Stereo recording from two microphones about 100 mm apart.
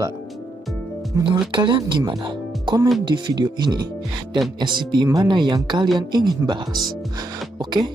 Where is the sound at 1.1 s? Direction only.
30° right (ahead or behind).